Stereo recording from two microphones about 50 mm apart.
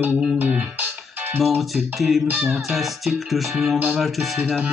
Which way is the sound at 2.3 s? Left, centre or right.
Right.